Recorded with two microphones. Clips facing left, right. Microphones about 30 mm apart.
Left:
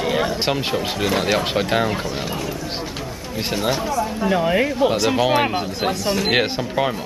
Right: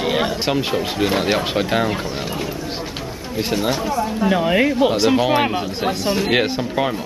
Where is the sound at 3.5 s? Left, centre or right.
Centre.